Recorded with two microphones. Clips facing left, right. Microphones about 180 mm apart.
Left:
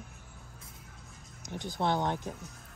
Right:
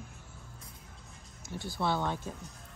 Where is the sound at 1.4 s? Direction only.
20° left (ahead or behind).